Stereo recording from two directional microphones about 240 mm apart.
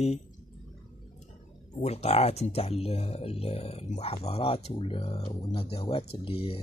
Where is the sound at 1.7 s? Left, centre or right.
Left.